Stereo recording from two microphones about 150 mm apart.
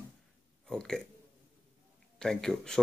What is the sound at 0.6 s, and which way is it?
Speech, 5° left (ahead or behind).